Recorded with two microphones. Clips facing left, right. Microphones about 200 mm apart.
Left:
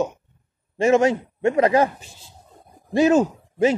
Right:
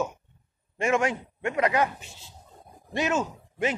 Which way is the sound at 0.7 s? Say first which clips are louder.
Left 8 dB; 25° left (ahead or behind).